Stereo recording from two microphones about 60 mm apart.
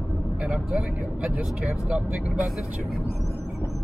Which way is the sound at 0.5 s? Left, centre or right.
Centre.